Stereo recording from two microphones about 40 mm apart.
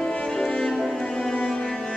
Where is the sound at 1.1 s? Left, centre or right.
Left.